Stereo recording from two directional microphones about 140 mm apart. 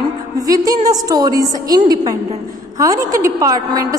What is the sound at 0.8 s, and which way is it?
Speech, 25° right (ahead or behind).